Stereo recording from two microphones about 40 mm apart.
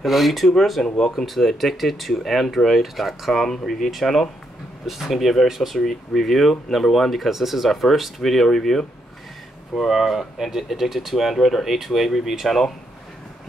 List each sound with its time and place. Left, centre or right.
0.0 s speech: centre
0.8 s speech: centre
1.1 s speech: centre
4.8 s speech: centre
5.9 s speech: centre
9.8 s speech: centre